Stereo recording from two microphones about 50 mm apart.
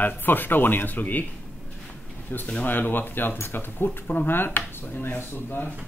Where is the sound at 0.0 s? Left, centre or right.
Left.